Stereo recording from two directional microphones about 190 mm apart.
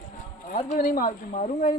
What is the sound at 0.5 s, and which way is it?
Speech, 40° left (ahead or behind).